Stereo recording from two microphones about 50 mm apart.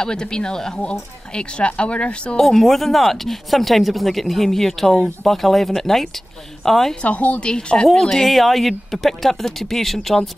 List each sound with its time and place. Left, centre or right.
0.0 s speech: centre
2.4 s speech: centre
7.0 s speech: left; by 10.3 s centre